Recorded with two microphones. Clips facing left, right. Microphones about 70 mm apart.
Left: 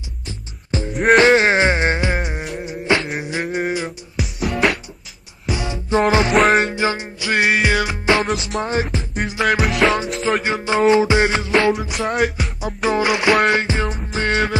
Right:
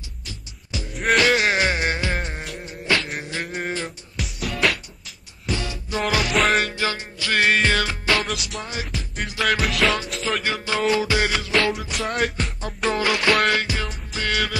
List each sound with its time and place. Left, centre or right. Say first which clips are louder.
0.7 s music: left 7 dB; left; by 2.5 s centre
3.2 s beatboxing: left 6 dB; centre
3.5 s music: left 6 dB; centre
5.5 s music: left 7 dB; left
8.5 s music: left 10 dB; left
9.4 s music: left 4 dB; centre
10.4 s music: left 7 dB; left
11.5 s music: left 5 dB; centre
13.0 s music: left 4 dB; centre